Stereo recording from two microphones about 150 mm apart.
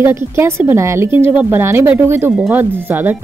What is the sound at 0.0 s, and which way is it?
A woman's voice, 15° right (ahead or behind).